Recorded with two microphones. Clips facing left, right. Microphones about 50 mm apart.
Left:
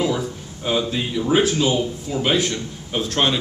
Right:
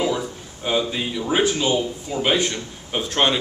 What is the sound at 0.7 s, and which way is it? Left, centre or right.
A man's voice, centre.